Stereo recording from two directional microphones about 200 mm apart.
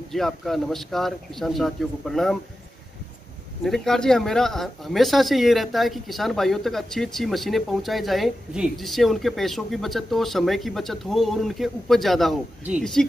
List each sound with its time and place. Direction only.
0.1 s speech: centre (ahead or behind)
3.6 s speech: centre (ahead or behind)